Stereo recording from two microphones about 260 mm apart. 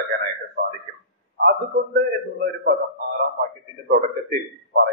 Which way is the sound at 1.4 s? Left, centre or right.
Right.